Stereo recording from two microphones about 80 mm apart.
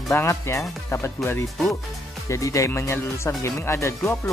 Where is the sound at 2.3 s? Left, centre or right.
Left.